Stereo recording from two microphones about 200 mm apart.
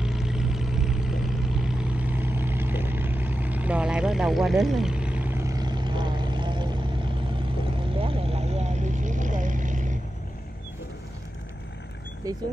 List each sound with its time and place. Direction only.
0.0 s vehicle: centre (ahead or behind); by 6.8 s 25° right (ahead or behind)
8.0 s vehicle: 30° right (ahead or behind)
12.2 s speech: 15° right (ahead or behind)